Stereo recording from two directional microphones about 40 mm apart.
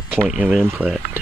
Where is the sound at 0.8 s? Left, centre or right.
Right.